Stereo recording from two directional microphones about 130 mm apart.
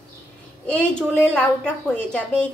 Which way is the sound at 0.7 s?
5° left (ahead or behind).